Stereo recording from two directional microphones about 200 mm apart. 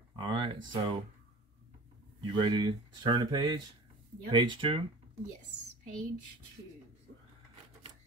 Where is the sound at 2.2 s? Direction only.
25° right (ahead or behind).